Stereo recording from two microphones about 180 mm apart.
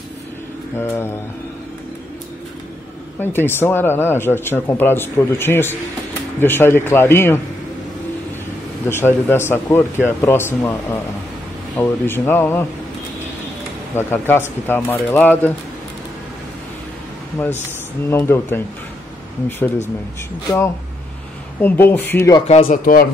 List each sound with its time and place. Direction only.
0.7 s speech: 15° left (ahead or behind)
3.2 s speech: 10° left (ahead or behind)
8.8 s speech: 10° left (ahead or behind)
13.9 s speech: 10° left (ahead or behind)
18.1 s speech: 15° left (ahead or behind)
20.4 s speech: 15° left (ahead or behind)
22.7 s speech: 50° left (ahead or behind)